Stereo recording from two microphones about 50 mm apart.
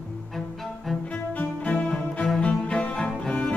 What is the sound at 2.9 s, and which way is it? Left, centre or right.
Music, centre.